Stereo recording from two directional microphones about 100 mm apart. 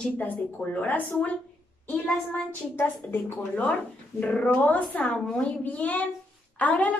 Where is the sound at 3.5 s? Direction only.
10° left (ahead or behind).